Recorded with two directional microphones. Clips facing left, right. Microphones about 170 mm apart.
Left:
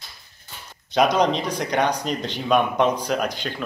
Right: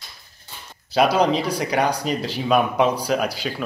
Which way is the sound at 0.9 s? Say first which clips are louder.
Right 1 dB; 5° right (ahead or behind).